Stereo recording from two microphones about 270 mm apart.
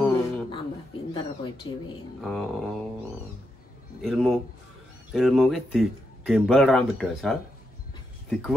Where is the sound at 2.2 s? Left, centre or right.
Centre.